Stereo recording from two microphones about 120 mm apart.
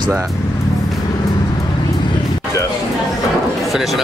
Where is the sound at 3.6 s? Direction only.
Centre (ahead or behind).